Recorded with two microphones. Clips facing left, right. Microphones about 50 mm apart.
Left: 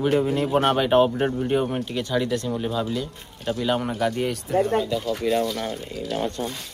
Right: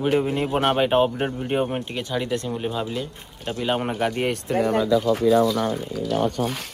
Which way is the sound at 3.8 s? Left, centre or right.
Right.